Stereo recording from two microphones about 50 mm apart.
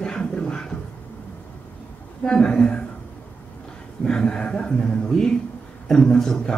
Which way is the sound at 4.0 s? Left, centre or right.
Centre.